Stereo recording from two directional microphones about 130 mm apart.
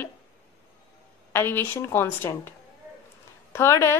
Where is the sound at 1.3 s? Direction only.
15° left (ahead or behind).